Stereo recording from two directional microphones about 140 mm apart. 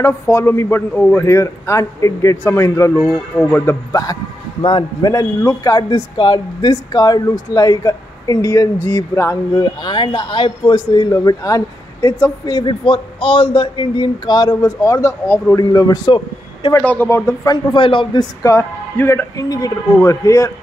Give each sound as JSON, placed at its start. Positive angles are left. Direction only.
{"t": 0.0, "sound": "speech", "side_deg": 20}
{"t": 3.1, "sound": "speech", "side_deg": -5}
{"t": 3.9, "sound": "speech", "side_deg": 25}
{"t": 16.7, "sound": "speech", "side_deg": 10}
{"t": 17.7, "sound": "speech", "side_deg": 35}
{"t": 18.4, "sound": "speech", "side_deg": 20}